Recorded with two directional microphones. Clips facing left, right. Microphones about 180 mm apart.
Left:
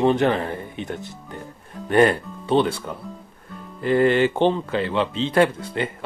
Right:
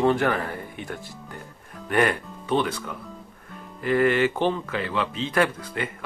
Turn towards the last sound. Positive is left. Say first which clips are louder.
# left 5 dB
turn(degrees=25)  # may be behind; listen again after turning